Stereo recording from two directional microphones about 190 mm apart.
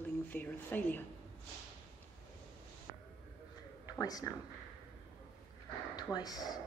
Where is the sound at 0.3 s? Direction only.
10° left (ahead or behind).